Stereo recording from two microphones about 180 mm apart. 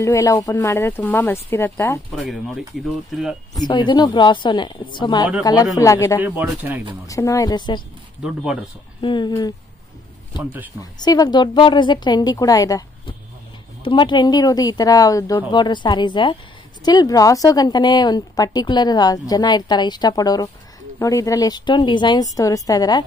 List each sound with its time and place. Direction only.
0.0 s speech: 15° left (ahead or behind)
2.1 s speech: centre (ahead or behind)
3.5 s a woman's voice: 25° left (ahead or behind)
6.2 s speech: 15° right (ahead or behind)
7.1 s a woman's voice: 15° left (ahead or behind)
9.0 s a woman's voice: 25° left (ahead or behind)
10.3 s speech: 10° right (ahead or behind)
10.8 s a woman's voice: 20° left (ahead or behind)